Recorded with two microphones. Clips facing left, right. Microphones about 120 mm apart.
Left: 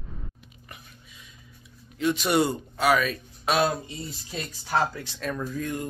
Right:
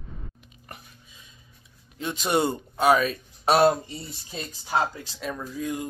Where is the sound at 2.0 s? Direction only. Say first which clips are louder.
Left 2 dB; 25° right (ahead or behind).